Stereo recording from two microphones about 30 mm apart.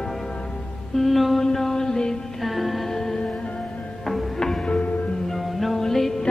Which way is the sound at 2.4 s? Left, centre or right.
Centre.